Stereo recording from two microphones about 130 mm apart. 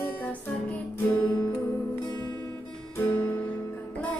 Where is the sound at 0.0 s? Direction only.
10° left (ahead or behind).